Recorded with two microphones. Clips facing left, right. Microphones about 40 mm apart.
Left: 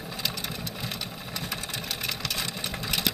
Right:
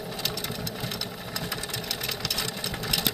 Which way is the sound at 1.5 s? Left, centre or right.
Left.